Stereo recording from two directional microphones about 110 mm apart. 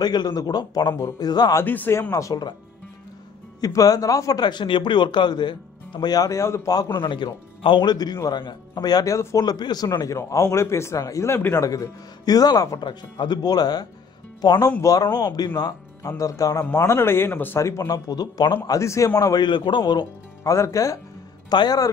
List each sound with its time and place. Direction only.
0.0 s a man's voice: 40° left (ahead or behind)
1.6 s a man's voice: 20° left (ahead or behind)
3.6 s a man's voice: 35° left (ahead or behind)
20.5 s a man's voice: 30° left (ahead or behind)
21.5 s a man's voice: 40° left (ahead or behind)